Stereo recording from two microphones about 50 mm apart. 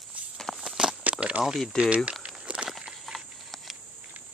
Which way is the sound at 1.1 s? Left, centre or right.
Right.